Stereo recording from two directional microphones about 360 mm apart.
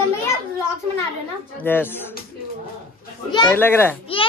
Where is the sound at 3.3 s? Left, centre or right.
Centre.